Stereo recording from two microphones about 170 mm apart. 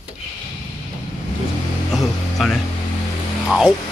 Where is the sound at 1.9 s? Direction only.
Centre (ahead or behind).